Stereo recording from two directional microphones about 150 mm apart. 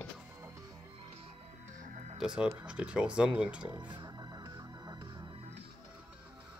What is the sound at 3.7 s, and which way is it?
Music, 30° right (ahead or behind).